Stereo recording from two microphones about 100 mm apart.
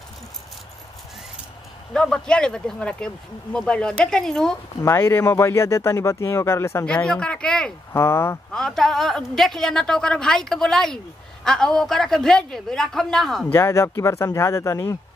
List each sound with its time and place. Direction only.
2.0 s speech: 5° left (ahead or behind)
4.8 s speech: 25° left (ahead or behind)
6.9 s speech: 10° left (ahead or behind)
7.9 s speech: 25° left (ahead or behind)
8.5 s a woman's voice: 5° left (ahead or behind)
13.5 s speech: 25° left (ahead or behind)